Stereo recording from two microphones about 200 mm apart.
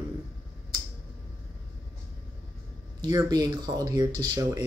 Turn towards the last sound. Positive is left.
turn(degrees=-20)  # may be behind; listen again after turning